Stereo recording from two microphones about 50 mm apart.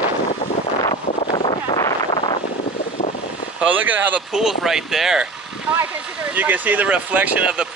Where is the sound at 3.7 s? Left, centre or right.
Right.